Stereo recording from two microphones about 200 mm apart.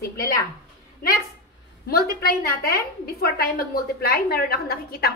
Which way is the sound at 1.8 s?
50° left (ahead or behind).